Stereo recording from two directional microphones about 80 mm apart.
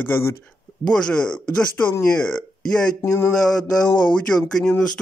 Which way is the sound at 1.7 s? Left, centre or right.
Left.